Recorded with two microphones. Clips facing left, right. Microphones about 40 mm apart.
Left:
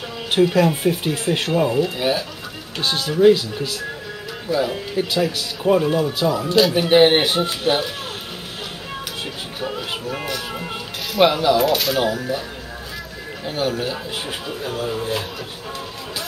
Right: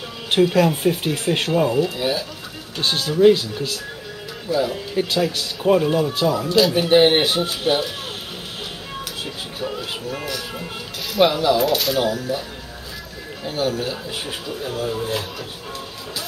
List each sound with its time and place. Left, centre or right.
0.3 s speech: centre
2.0 s speech: left
2.8 s speech: centre
4.5 s speech: centre
4.9 s speech: centre
9.6 s music: centre
11.1 s speech: centre
13.5 s speech: centre